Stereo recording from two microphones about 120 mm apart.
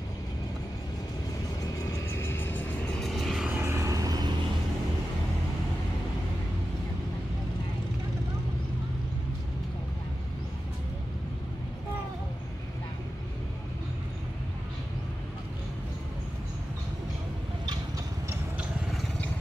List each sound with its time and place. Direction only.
1.6 s music: 20° left (ahead or behind)
3.0 s vehicle: centre (ahead or behind)
3.4 s vehicle: 15° right (ahead or behind)
3.7 s vehicle: 25° right (ahead or behind)